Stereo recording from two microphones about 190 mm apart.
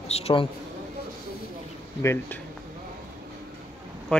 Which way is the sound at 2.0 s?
10° left (ahead or behind).